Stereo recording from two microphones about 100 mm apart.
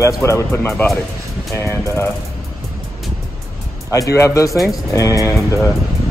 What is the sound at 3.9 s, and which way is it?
Speech, 35° left (ahead or behind).